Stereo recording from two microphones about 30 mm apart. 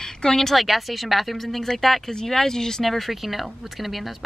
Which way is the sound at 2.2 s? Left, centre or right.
Centre.